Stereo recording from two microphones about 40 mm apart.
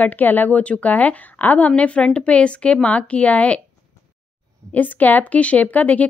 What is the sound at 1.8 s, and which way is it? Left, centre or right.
A woman's voice, left.